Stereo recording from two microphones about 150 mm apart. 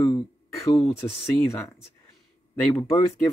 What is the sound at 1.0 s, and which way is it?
Speech, 20° left (ahead or behind).